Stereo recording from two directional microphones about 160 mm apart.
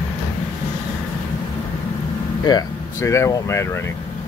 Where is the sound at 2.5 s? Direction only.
20° left (ahead or behind).